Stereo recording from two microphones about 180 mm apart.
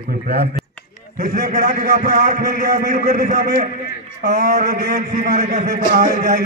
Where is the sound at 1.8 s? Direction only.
55° right (ahead or behind).